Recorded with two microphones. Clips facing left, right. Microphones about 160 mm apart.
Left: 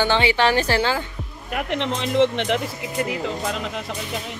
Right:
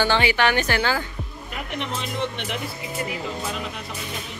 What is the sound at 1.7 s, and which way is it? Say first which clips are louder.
Speech: left 6 dB; 90° left.